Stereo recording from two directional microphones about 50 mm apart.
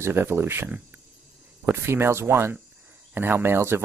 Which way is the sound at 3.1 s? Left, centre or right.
Right.